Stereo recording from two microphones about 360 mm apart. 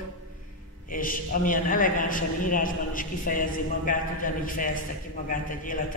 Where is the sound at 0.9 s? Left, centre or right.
Left.